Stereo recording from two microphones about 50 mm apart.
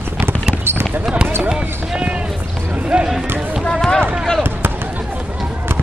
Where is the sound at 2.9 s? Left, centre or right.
Right.